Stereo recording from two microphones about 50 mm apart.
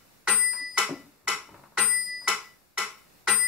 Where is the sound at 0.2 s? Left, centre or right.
Centre.